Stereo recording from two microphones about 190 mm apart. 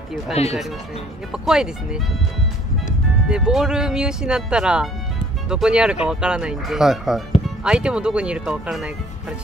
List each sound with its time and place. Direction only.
0.3 s speech: 35° left (ahead or behind)
1.3 s speech: 5° right (ahead or behind)
3.3 s speech: 5° right (ahead or behind)